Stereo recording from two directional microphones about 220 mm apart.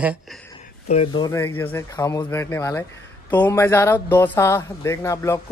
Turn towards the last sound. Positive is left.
turn(degrees=15)  # may be behind; listen again after turning